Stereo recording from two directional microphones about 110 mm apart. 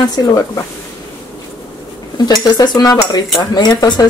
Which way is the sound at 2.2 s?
40° left (ahead or behind).